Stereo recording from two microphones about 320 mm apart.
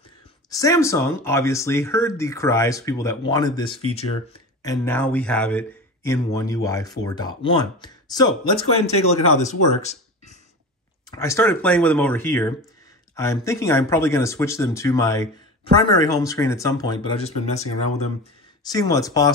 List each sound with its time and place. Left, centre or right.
0.5 s speech: centre
11.1 s speech: centre